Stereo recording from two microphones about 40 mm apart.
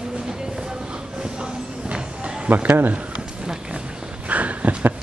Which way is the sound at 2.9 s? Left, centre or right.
Right.